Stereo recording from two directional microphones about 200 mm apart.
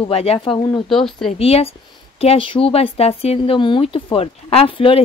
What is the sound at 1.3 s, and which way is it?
Speech, 30° left (ahead or behind).